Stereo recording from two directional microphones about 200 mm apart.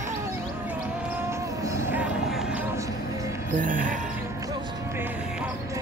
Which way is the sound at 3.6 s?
40° right (ahead or behind).